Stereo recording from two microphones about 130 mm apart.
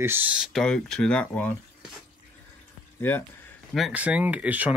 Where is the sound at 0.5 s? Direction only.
5° left (ahead or behind).